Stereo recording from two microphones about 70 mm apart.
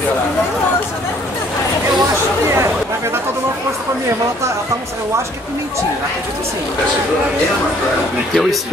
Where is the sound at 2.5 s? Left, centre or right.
Right.